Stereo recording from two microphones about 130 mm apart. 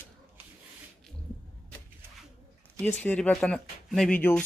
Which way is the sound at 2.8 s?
10° left (ahead or behind).